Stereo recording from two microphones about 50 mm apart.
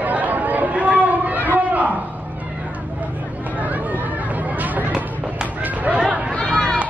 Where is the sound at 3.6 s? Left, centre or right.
Right.